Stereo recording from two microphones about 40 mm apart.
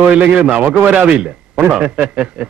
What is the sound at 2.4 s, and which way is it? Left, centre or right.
Speech, right.